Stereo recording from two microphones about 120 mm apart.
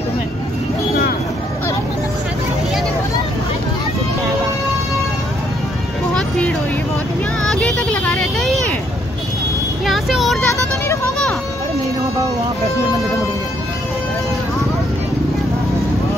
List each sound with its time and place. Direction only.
7.4 s vehicle: 10° left (ahead or behind)
9.8 s vehicle: centre (ahead or behind)
10.5 s vehicle: 25° left (ahead or behind)